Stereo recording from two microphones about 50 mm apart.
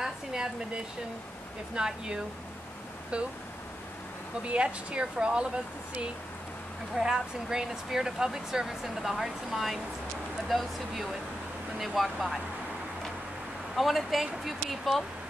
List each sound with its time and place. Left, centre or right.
0.0 s a sound: centre
1.8 s speech: centre
4.4 s speech: right
7.0 s speech: centre
13.7 s speech: centre